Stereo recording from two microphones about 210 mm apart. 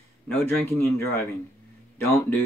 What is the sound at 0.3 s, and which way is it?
Speech, 10° left (ahead or behind).